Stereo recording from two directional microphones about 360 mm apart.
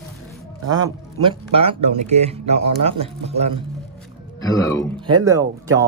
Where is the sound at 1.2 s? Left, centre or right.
Centre.